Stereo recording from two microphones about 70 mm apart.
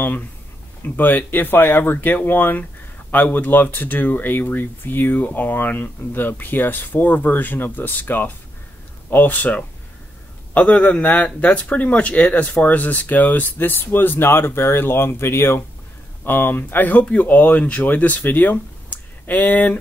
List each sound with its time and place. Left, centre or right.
0.8 s speech: left